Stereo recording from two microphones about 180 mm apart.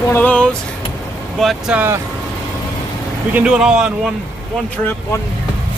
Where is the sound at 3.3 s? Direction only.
5° right (ahead or behind).